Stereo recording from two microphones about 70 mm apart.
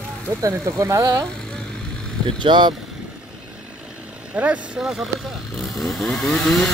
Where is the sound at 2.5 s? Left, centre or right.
Right.